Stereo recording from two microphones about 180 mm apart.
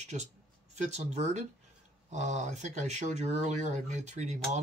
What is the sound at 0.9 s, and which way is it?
Speech, 40° right (ahead or behind).